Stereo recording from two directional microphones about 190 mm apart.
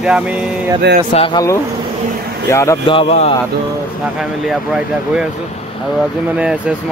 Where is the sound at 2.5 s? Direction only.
15° left (ahead or behind).